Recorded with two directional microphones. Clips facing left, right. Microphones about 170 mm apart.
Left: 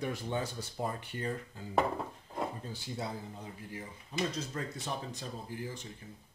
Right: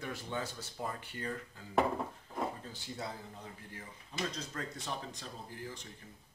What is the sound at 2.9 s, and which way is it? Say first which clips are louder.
Speech: left 3 dB; 15° left (ahead or behind).